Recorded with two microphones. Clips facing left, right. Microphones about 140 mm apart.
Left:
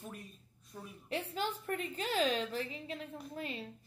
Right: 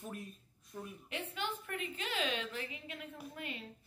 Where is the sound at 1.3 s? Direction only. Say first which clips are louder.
Left 3 dB; 35° left (ahead or behind).